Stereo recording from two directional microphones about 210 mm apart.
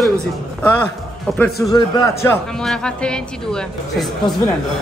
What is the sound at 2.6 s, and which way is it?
Speech, 5° left (ahead or behind).